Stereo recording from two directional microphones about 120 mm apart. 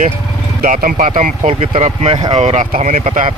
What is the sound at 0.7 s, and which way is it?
Speech, 90° right.